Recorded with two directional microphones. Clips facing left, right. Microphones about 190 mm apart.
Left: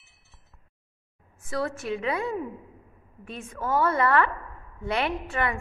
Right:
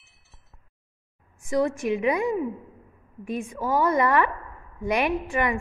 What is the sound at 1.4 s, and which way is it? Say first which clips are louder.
A woman's voice: right 6 dB; 15° right (ahead or behind).